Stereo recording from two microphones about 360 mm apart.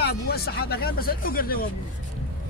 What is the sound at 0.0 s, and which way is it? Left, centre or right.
Speech, left.